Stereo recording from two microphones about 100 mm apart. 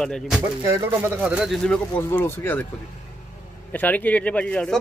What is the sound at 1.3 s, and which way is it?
Speech, centre (ahead or behind).